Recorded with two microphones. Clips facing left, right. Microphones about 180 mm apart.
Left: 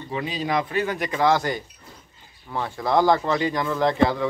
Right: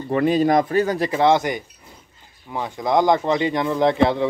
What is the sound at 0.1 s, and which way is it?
Speech, 55° right (ahead or behind).